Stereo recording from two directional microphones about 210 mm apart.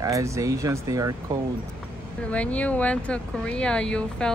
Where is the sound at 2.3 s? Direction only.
5° left (ahead or behind).